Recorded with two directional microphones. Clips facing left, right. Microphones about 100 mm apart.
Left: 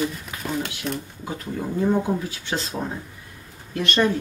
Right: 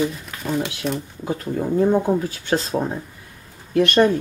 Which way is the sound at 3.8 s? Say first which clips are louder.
Right 6 dB; 55° right (ahead or behind).